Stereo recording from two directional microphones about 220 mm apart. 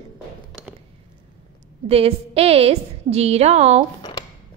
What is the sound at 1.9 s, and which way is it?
A woman's voice, 25° right (ahead or behind).